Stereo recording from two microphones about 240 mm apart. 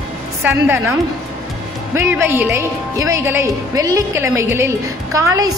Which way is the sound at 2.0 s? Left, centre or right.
Centre.